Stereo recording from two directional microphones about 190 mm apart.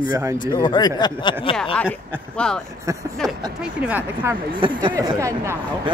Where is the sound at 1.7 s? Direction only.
5° left (ahead or behind); by 4.3 s 10° right (ahead or behind).